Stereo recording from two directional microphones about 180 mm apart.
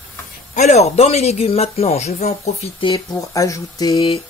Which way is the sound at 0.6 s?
40° left (ahead or behind).